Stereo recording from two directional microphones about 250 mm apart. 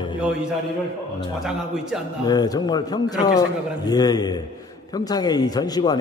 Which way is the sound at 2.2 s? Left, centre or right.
Centre.